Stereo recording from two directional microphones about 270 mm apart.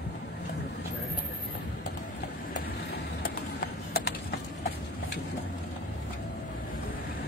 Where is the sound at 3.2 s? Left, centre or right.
Left.